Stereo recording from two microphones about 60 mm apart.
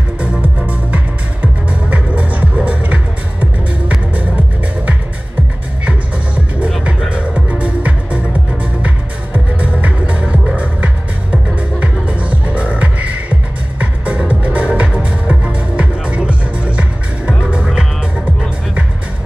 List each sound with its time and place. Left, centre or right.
0.2 s music: right
7.1 s music: right